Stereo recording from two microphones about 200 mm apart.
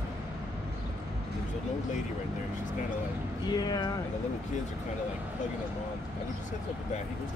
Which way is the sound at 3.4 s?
20° left (ahead or behind).